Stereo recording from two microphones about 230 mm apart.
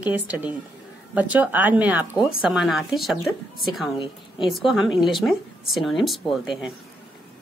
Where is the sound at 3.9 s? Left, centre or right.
Left.